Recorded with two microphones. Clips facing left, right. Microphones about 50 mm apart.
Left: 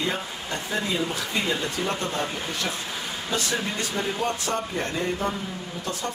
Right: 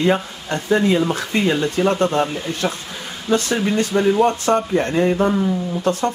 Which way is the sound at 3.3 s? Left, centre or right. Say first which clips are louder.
Right 10 dB; right.